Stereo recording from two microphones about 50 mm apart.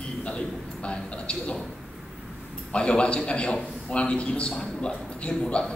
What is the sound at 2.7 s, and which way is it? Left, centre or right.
A man's voice, left.